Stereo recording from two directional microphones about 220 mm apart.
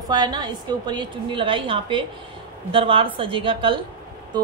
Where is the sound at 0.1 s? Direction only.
20° right (ahead or behind).